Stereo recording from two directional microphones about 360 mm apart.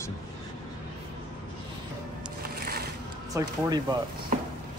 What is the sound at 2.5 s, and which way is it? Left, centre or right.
Boat, right.